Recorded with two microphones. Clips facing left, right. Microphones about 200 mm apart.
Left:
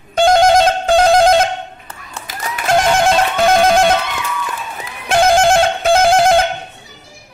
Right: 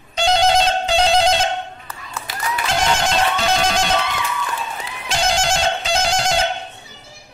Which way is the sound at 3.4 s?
55° left (ahead or behind).